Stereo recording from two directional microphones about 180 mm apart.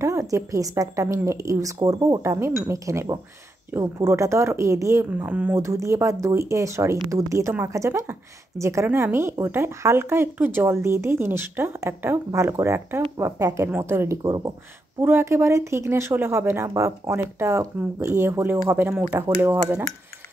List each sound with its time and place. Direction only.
0.0 s a woman's voice: 15° right (ahead or behind)